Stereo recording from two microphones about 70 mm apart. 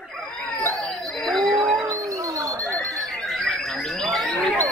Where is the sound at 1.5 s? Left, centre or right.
Centre.